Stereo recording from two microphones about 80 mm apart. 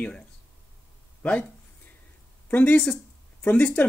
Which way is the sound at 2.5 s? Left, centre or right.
Centre.